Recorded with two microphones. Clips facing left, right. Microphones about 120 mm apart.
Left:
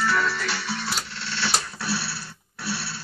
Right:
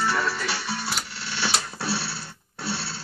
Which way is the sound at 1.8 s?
25° right (ahead or behind).